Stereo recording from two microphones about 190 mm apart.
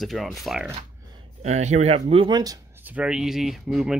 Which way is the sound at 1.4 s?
35° right (ahead or behind).